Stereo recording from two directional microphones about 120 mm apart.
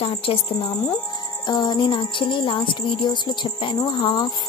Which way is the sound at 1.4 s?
35° left (ahead or behind).